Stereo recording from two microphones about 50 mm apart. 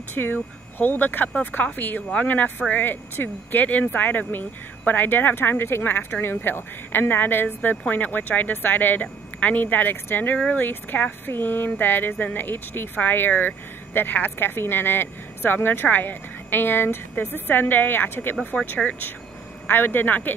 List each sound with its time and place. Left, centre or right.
0.1 s speech: left
18.3 s speech: left